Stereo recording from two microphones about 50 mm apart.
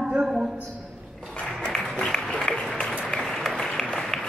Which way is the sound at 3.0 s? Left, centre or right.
Centre.